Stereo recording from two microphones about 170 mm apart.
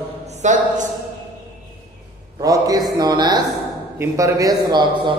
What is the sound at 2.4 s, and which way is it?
A man's voice, 20° right (ahead or behind).